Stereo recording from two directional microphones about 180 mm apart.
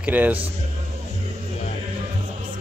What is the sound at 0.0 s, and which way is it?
Speech, 10° right (ahead or behind).